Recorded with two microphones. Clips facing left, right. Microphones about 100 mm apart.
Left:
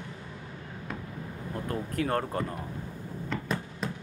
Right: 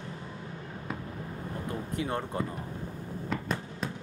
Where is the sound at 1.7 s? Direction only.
50° left (ahead or behind).